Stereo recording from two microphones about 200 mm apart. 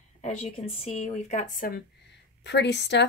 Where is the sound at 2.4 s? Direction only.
60° left (ahead or behind).